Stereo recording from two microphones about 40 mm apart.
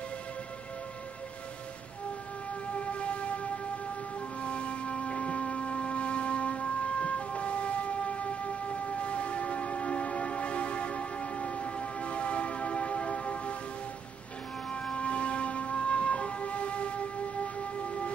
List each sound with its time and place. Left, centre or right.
2.8 s music: left
4.4 s music: left
15.0 s music: left